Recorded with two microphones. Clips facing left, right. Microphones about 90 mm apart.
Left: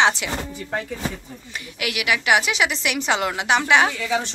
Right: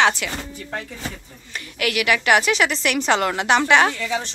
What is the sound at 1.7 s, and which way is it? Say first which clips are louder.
A woman's voice: right 3 dB; 10° left (ahead or behind).